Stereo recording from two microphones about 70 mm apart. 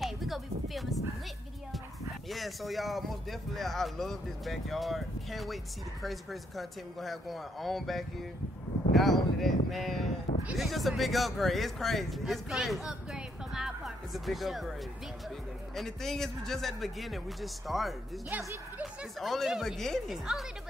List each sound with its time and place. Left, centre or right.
0.0 s a sound: centre
2.2 s speech: centre
18.3 s speech: right
19.1 s speech: centre